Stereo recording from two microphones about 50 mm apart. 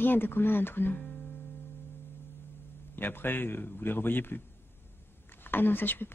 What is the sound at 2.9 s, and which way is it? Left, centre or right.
Speech, left.